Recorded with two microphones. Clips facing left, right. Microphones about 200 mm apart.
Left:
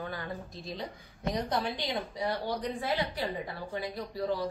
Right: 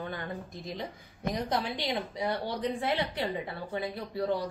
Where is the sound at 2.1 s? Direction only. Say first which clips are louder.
Even; 25° right (ahead or behind).